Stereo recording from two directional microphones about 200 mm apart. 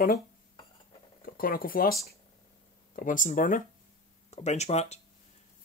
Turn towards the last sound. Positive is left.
turn(degrees=35)  # may be behind; listen again after turning